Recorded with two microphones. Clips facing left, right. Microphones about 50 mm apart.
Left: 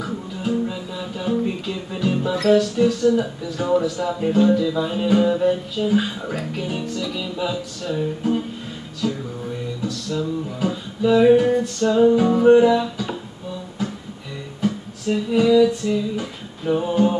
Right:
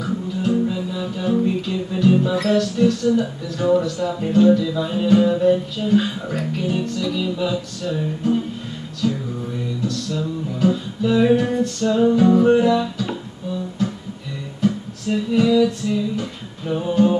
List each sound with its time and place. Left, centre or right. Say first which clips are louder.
0.0 s music: right 4 dB; centre